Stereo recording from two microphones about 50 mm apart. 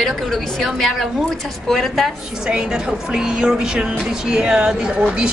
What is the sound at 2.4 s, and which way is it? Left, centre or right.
A woman's voice, centre.